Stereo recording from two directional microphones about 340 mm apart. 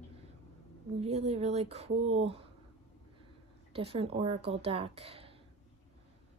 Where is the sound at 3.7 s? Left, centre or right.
Centre.